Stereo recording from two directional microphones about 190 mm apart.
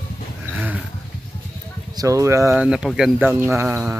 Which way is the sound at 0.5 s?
10° right (ahead or behind).